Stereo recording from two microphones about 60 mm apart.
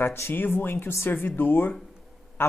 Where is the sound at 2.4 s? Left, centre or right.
Left.